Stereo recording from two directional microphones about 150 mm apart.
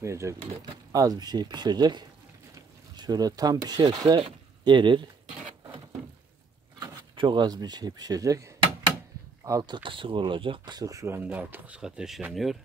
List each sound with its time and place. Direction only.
0.0 s speech: 20° right (ahead or behind)
2.5 s a sound: 25° right (ahead or behind)
3.9 s speech: 25° right (ahead or behind)
6.8 s speech: 30° right (ahead or behind); by 12.5 s centre (ahead or behind)